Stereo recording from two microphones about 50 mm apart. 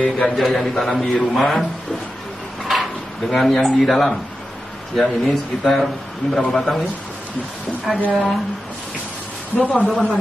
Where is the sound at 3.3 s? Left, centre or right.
Centre.